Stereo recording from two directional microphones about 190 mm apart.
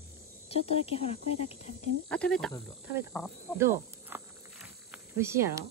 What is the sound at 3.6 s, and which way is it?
Snake, 10° right (ahead or behind).